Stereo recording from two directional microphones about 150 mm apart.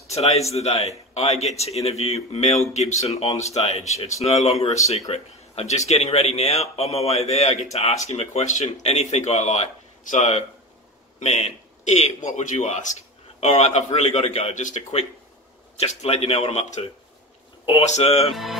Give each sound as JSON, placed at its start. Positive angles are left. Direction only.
{"t": 0.1, "sound": "a man's voice", "side_deg": 45}
{"t": 18.3, "sound": "music", "side_deg": 0}